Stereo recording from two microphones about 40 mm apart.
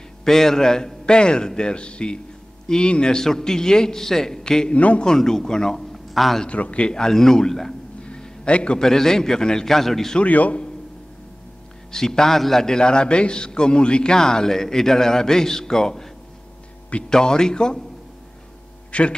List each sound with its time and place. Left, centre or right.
0.2 s a man's voice: centre
4.7 s a man's voice: left
5.0 s a man's voice: centre
6.6 s a man's voice: left
6.9 s a man's voice: centre
8.0 s a sound: left
8.7 s a man's voice: centre
10.2 s a man's voice: left
11.9 s a man's voice: centre
17.1 s a man's voice: centre
18.9 s speech: left